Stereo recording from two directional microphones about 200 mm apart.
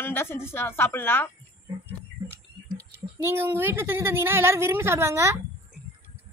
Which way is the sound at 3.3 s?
10° right (ahead or behind).